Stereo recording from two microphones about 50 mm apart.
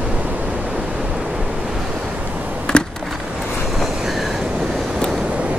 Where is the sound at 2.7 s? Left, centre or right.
Centre.